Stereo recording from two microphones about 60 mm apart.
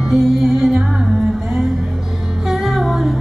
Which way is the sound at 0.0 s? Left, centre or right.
Centre.